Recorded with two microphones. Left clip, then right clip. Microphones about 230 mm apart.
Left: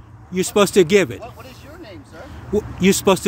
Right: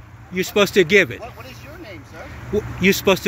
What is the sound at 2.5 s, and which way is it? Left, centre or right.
Speech, left.